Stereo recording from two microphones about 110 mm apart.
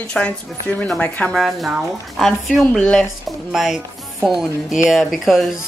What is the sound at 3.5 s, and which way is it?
Speech, 5° right (ahead or behind).